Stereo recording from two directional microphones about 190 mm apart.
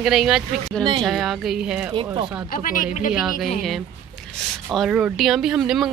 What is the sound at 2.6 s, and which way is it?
Speech, 45° left (ahead or behind).